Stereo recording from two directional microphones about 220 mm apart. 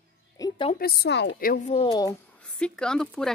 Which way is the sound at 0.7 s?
45° left (ahead or behind).